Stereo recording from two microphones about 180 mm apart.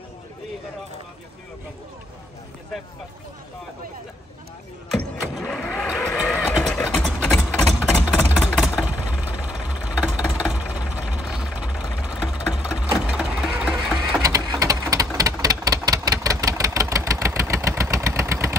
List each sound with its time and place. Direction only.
4.9 s vehicle: centre (ahead or behind)
14.2 s typewriter: 20° right (ahead or behind)